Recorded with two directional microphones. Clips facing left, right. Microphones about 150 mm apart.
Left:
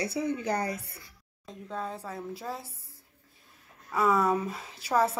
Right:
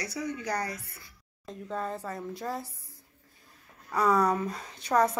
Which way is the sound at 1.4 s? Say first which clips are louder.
Right 2 dB; centre (ahead or behind).